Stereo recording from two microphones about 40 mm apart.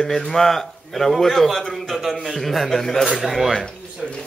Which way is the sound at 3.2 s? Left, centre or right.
Centre.